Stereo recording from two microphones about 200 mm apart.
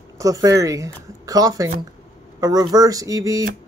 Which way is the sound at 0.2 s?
15° right (ahead or behind).